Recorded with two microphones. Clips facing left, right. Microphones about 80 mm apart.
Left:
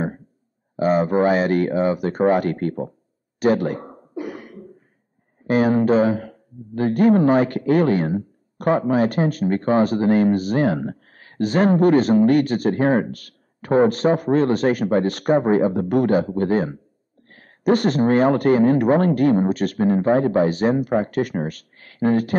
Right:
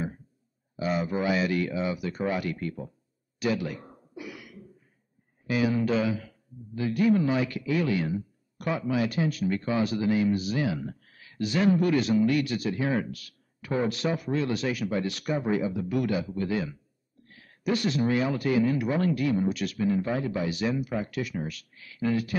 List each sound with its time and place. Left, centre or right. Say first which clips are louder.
0.7 s speech: left 11 dB; left
3.3 s a sound: left 10 dB; left
5.5 s speech: left 9 dB; left